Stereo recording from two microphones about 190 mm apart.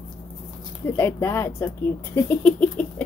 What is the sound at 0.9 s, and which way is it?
Speech, 10° left (ahead or behind).